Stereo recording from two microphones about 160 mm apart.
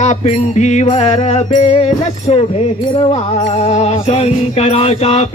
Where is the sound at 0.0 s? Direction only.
45° left (ahead or behind).